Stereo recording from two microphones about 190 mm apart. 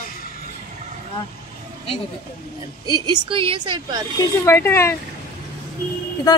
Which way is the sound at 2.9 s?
25° right (ahead or behind).